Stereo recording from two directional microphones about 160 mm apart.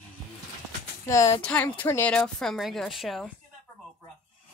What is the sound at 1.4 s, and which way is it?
A woman's voice, 5° left (ahead or behind).